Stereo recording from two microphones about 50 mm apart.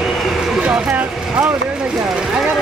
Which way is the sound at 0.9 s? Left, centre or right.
Right.